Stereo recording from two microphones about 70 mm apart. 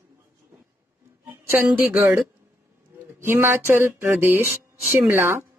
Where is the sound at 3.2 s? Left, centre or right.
Right.